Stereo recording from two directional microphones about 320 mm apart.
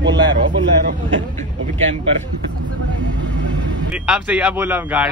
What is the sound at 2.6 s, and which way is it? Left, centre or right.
Speech, right.